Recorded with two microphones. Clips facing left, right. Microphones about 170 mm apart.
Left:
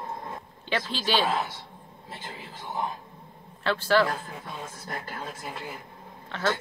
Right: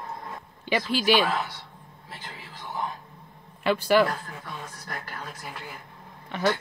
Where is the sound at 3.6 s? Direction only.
15° right (ahead or behind).